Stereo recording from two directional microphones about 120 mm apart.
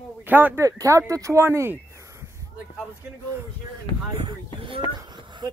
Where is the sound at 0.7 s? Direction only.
30° right (ahead or behind).